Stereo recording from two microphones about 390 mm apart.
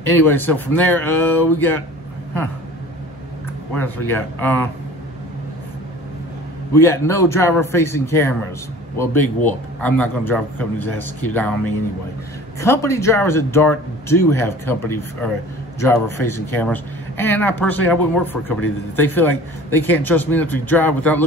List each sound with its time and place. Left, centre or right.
0.1 s a man's voice: centre
3.7 s a man's voice: centre
6.7 s a man's voice: centre